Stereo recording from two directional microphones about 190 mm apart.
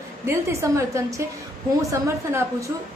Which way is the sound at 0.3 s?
15° right (ahead or behind).